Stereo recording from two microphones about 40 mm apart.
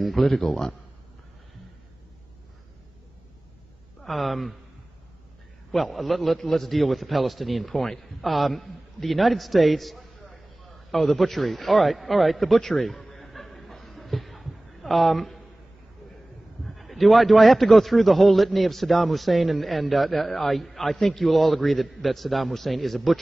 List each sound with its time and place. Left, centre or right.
0.0 s a man's voice: centre
4.0 s a man's voice: centre
5.7 s a man's voice: centre
13.0 s chuckle: centre
16.6 s a man's voice: centre